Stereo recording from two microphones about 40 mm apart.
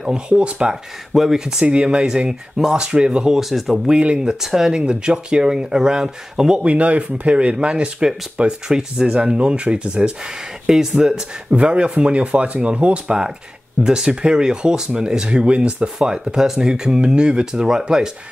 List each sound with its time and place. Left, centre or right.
0.3 s speech: right
1.1 s speech: centre
1.6 s speech: right
3.3 s speech: centre
6.6 s speech: right
10.7 s speech: centre
11.5 s speech: right